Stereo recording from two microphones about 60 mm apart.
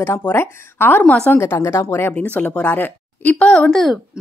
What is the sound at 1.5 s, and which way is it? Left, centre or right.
Speech, left.